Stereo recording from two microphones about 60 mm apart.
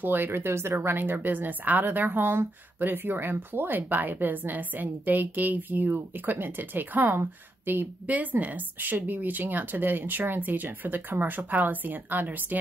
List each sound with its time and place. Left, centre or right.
0.0 s speech: right